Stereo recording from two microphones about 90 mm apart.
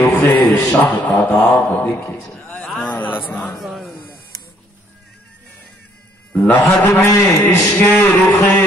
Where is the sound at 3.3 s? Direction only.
15° left (ahead or behind).